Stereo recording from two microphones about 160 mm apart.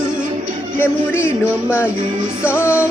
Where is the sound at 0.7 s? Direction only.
15° left (ahead or behind).